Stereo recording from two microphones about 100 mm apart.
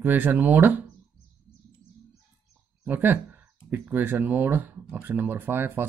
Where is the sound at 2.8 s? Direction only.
20° right (ahead or behind).